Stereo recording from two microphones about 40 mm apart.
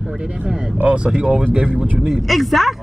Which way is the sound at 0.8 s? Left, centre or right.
Right.